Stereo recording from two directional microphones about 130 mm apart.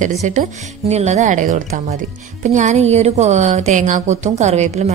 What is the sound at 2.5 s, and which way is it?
A woman's voice, 60° right (ahead or behind).